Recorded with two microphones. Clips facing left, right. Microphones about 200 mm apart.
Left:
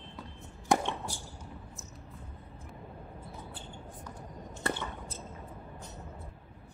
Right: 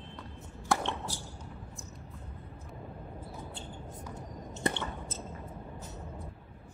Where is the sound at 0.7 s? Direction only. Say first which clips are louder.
Left 3 dB; 20° left (ahead or behind).